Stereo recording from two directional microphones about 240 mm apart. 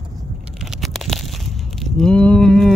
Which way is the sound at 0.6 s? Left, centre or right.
Centre.